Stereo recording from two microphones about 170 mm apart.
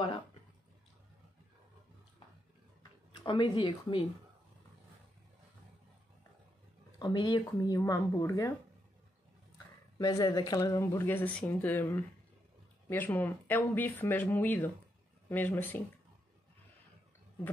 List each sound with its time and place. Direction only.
2.8 s speech: 30° left (ahead or behind)
7.0 s speech: 25° left (ahead or behind)
9.9 s speech: 20° left (ahead or behind)